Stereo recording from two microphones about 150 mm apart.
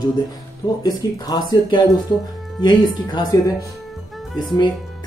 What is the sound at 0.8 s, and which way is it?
Speech, 25° left (ahead or behind).